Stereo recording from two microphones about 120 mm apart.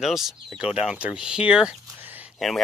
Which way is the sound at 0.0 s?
5° right (ahead or behind).